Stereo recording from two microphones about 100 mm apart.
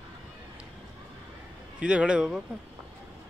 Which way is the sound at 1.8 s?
10° right (ahead or behind).